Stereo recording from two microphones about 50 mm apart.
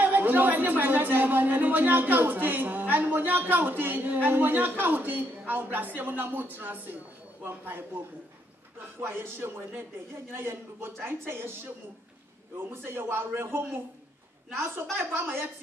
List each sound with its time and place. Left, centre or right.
0.0 s speech: right
9.1 s speech: right